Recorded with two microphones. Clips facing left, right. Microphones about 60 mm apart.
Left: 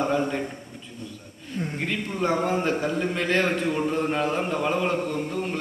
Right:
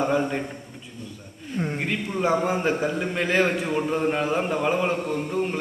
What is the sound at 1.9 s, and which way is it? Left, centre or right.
A man's voice, centre.